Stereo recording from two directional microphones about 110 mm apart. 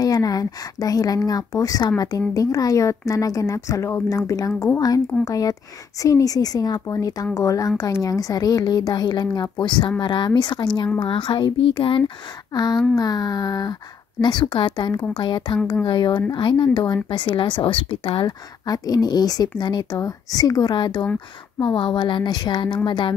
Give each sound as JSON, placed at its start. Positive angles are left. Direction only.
{"t": 0.0, "sound": "speech", "side_deg": 35}
{"t": 12.5, "sound": "speech", "side_deg": 40}
{"t": 18.2, "sound": "speech", "side_deg": 35}